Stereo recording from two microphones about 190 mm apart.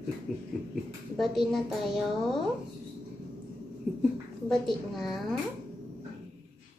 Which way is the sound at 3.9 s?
Centre (ahead or behind).